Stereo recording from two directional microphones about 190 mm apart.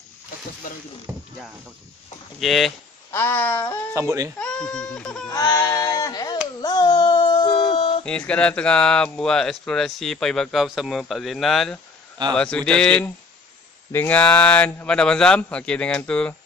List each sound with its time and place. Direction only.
0.7 s speech: 45° left (ahead or behind)
1.1 s speech: 15° right (ahead or behind)
2.4 s speech: centre (ahead or behind)
3.1 s a man's voice: 10° left (ahead or behind)
3.9 s speech: 15° right (ahead or behind)
4.4 s speech: 5° left (ahead or behind)
5.3 s a sound: 20° left (ahead or behind)
8.3 s a man's voice: 5° left (ahead or behind)